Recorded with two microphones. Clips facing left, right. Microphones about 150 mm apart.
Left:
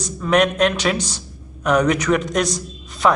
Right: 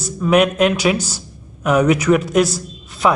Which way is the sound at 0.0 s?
5° right (ahead or behind).